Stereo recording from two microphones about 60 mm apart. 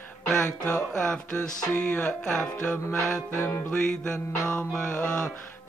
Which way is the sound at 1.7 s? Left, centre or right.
Left.